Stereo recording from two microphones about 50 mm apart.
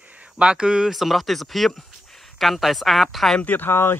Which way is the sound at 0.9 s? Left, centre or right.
Centre.